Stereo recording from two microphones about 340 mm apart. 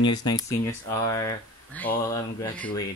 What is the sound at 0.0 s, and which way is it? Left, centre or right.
Speech, centre.